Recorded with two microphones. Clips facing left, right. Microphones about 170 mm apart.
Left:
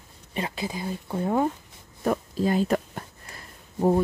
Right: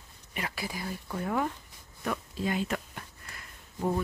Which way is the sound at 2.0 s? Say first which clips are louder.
Left 8 dB; 40° left (ahead or behind).